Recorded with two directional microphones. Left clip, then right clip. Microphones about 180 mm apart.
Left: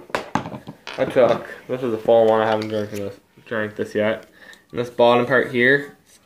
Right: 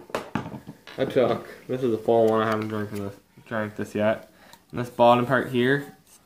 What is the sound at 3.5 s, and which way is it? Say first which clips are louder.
Speech: left 5 dB; 40° right (ahead or behind).